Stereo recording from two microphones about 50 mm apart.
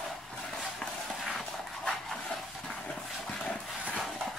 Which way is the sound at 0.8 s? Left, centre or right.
Centre.